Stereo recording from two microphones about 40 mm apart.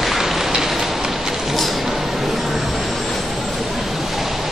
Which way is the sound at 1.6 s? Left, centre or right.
Centre.